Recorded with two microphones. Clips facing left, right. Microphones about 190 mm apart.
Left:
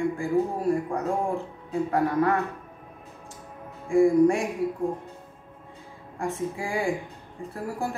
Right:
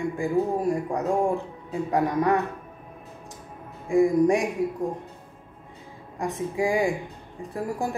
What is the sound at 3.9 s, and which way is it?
Speech, 15° right (ahead or behind).